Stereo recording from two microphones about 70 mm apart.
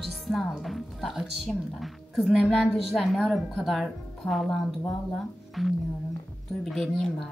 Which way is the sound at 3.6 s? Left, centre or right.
Centre.